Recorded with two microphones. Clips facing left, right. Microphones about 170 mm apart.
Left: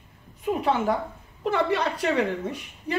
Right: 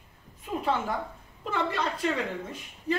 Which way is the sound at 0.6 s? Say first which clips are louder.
Left 3 dB; 75° left (ahead or behind).